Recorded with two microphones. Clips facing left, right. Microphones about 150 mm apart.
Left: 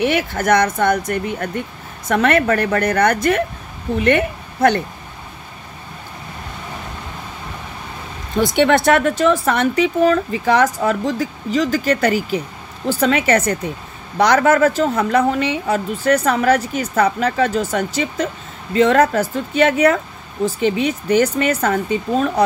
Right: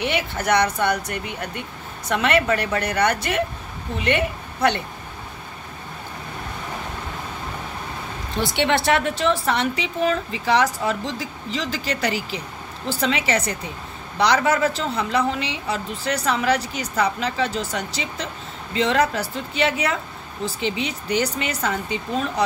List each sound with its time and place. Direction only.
0.1 s a woman's voice: 50° left (ahead or behind)
8.4 s a woman's voice: 45° left (ahead or behind)